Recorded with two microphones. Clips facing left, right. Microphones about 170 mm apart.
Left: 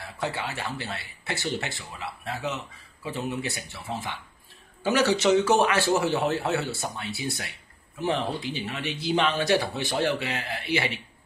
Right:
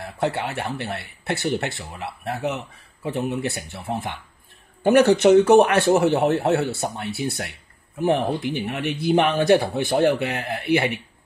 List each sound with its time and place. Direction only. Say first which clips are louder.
0.0 s speech: right 7 dB; 60° right (ahead or behind)